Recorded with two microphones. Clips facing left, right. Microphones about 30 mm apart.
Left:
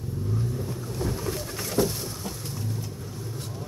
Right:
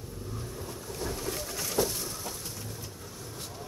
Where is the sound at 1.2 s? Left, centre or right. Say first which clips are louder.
Left 3 dB; left.